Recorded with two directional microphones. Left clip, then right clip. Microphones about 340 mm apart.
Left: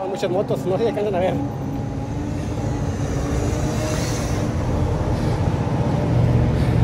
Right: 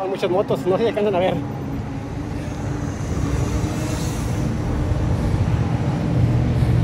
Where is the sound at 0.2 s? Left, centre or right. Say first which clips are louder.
Right 2 dB; right.